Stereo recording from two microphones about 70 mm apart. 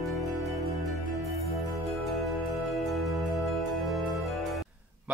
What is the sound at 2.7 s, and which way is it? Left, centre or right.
Music, centre.